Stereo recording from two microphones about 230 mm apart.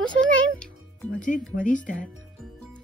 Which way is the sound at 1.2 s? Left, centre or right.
Left.